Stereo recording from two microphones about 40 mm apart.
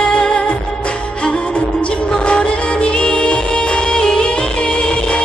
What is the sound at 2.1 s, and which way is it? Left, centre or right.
Music, left.